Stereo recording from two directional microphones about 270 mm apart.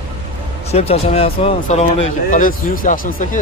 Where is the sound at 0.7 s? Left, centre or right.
Left.